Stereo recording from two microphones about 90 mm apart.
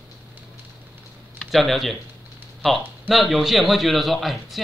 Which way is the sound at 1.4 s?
Centre (ahead or behind).